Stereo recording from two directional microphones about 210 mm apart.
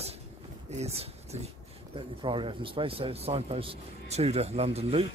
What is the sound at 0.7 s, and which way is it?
Speech, 30° right (ahead or behind).